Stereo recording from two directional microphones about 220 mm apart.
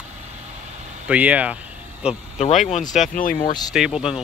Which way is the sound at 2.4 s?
30° left (ahead or behind).